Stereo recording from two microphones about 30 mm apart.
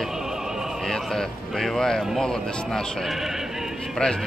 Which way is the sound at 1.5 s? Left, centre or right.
Centre.